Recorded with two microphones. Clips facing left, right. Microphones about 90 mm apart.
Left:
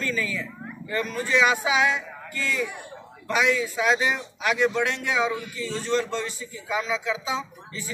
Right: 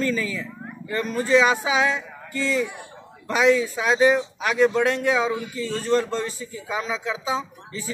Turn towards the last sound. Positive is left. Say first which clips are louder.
# right 2 dB
turn(degrees=-35)  # may be behind; listen again after turning